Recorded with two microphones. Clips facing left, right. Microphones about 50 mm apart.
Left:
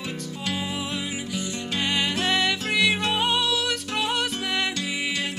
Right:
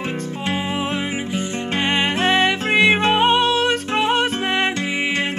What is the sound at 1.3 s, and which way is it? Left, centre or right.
Music, right.